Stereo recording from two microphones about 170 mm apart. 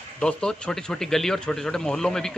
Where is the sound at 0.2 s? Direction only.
5° left (ahead or behind).